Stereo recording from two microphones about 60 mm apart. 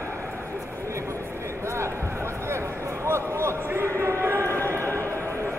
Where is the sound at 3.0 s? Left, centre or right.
Right.